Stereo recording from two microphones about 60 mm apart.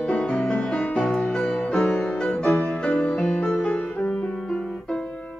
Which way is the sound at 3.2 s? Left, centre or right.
Centre.